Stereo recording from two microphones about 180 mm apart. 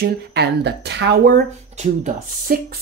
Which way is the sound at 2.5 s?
50° right (ahead or behind).